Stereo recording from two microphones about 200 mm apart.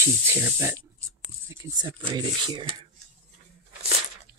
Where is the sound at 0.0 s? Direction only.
15° right (ahead or behind).